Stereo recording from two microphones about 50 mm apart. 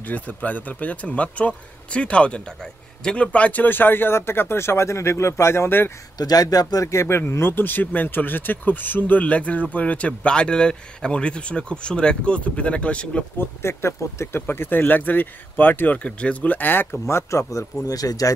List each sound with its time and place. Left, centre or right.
0.1 s a man's voice: left; by 3.3 s centre
3.3 s speech: left
3.6 s speech: left
6.8 s speech: left
13.4 s speech: left
14.4 s speech: left
16.0 s speech: left
17.1 s speech: left